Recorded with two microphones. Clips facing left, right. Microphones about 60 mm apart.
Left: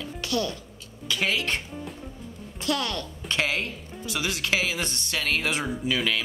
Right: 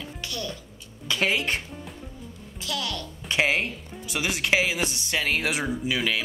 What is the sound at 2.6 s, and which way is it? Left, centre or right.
Speech, left.